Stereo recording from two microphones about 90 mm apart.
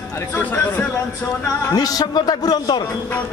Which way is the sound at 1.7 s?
45° left (ahead or behind).